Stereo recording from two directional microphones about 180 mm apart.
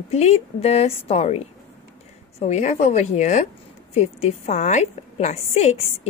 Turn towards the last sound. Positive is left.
turn(degrees=35)  # may be behind; listen again after turning